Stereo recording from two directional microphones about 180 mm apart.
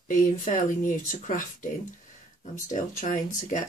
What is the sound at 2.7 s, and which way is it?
Speech, 45° left (ahead or behind).